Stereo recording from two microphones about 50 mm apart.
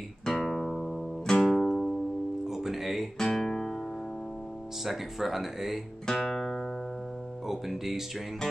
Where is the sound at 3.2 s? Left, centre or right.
Centre.